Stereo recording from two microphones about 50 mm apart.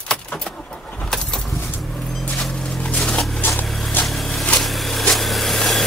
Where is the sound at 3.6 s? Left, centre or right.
Centre.